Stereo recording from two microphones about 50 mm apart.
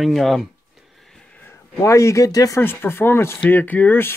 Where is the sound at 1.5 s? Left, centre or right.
Left.